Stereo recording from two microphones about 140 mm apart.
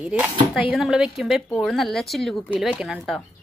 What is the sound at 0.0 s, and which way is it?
A woman's voice, 10° right (ahead or behind).